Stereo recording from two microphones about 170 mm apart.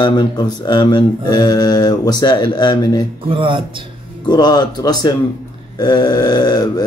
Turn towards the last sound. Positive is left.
turn(degrees=25)  # may be behind; listen again after turning